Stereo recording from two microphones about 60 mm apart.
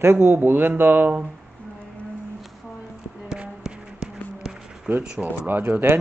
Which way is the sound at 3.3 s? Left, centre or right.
Centre.